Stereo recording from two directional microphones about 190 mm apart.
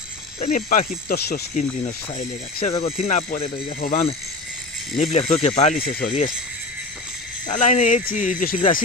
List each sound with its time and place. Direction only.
0.4 s speech: 45° left (ahead or behind)
7.4 s speech: 40° left (ahead or behind)